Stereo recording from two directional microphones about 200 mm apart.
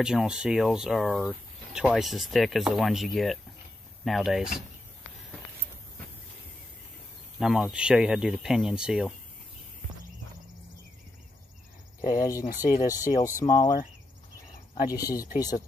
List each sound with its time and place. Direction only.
0.0 s speech: 5° right (ahead or behind)
7.3 s speech: centre (ahead or behind)
12.1 s speech: 15° left (ahead or behind)
14.9 s speech: 15° left (ahead or behind)